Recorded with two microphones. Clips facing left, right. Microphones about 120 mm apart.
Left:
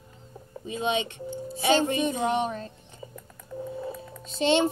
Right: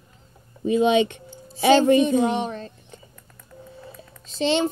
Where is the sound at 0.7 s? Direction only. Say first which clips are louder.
Right 10 dB; 80° right.